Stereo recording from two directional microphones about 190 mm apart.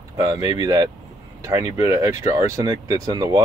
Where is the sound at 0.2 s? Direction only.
20° right (ahead or behind).